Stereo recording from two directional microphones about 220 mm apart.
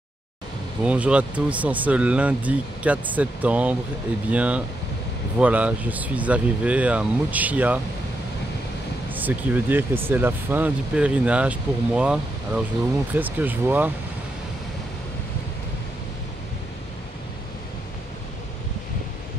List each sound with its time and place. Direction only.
0.8 s speech: 5° right (ahead or behind)
9.1 s speech: 10° right (ahead or behind)